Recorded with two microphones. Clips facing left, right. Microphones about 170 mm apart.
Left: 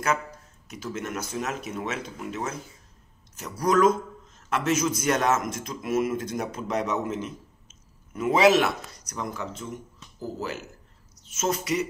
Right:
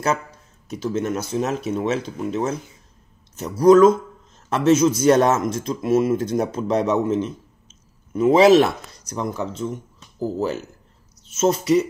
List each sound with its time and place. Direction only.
0.7 s speech: 30° right (ahead or behind)
9.9 s a sound: 30° right (ahead or behind)
11.2 s speech: 30° right (ahead or behind)